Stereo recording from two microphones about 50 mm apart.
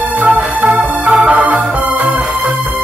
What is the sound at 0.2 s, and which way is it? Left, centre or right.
Music, right.